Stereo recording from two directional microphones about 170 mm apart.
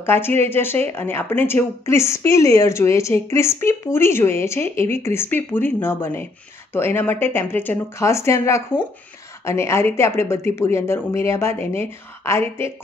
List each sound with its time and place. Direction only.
0.0 s a woman's voice: 15° left (ahead or behind)